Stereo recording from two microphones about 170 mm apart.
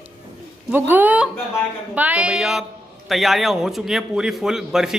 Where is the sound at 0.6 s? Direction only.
10° right (ahead or behind).